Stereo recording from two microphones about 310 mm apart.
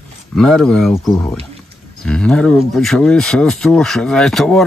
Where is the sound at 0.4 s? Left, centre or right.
Centre.